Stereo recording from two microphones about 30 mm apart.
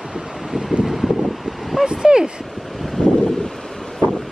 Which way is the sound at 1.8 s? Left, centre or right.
Right.